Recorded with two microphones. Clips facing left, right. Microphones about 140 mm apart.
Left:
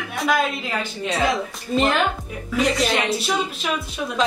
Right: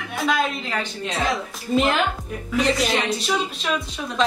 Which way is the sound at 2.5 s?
Centre (ahead or behind).